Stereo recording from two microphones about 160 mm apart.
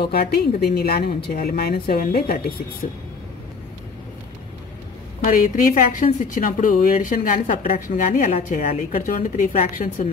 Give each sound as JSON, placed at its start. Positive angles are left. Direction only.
{"t": 0.0, "sound": "a woman's voice", "side_deg": 80}
{"t": 5.2, "sound": "a woman's voice", "side_deg": 60}